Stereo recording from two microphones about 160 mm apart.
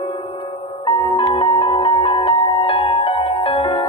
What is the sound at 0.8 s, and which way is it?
Music, 35° left (ahead or behind).